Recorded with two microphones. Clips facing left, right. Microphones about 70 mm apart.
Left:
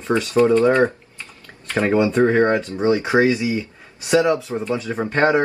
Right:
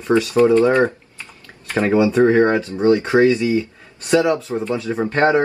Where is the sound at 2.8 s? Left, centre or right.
Centre.